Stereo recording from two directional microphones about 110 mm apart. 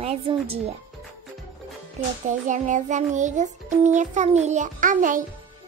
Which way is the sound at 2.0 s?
90° right.